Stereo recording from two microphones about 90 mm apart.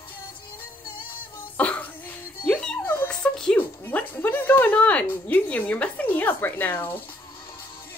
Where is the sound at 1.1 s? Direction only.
20° left (ahead or behind).